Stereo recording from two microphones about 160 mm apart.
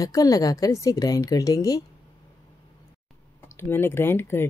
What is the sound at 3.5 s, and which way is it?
Speech, 15° left (ahead or behind).